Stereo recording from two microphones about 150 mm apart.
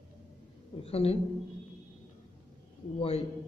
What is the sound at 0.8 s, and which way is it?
Speech, 40° left (ahead or behind).